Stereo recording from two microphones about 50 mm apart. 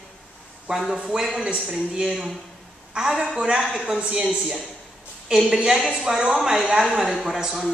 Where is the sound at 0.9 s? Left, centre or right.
Centre.